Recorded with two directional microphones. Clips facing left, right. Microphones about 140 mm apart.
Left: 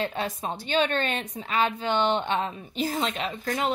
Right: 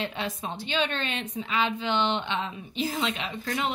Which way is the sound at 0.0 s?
40° left (ahead or behind).